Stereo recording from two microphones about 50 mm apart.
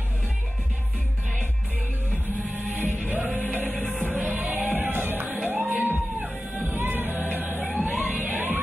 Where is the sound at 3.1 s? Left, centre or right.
Right.